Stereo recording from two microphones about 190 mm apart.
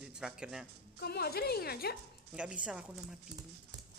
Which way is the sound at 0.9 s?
55° left (ahead or behind).